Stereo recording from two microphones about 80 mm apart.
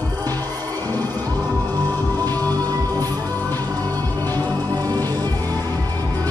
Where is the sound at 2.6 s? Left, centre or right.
Right.